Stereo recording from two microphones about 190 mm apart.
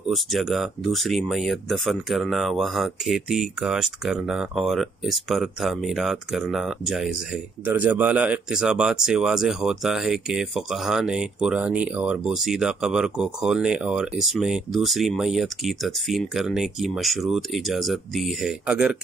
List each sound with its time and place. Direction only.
0.1 s speech: centre (ahead or behind)